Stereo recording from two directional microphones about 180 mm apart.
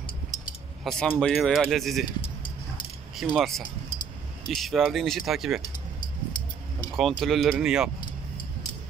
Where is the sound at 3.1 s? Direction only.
Centre (ahead or behind).